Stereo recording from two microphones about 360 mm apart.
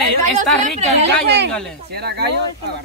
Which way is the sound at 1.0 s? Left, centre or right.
Right.